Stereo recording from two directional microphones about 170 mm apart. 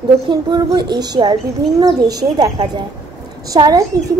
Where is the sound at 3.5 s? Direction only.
20° right (ahead or behind).